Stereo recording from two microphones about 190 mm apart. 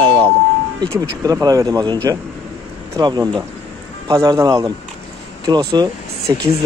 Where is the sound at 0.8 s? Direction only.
20° right (ahead or behind).